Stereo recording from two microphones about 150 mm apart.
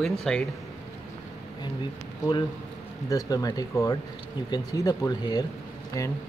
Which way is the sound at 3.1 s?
25° left (ahead or behind).